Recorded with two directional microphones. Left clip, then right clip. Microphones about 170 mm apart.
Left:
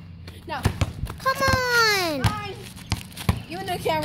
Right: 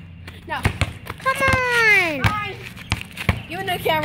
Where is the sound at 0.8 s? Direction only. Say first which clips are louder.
Right 5 dB; 55° left (ahead or behind).